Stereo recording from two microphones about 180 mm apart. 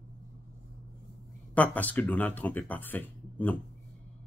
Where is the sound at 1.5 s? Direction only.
10° left (ahead or behind).